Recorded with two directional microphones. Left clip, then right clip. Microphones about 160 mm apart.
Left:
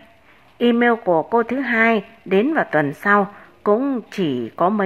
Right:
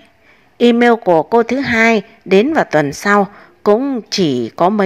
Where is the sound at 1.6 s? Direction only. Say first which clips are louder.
Right 5 dB; 45° right (ahead or behind).